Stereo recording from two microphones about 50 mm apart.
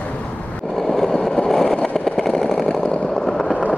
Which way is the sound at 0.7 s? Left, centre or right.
Centre.